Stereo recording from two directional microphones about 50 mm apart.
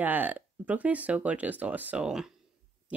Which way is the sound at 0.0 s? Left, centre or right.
Right.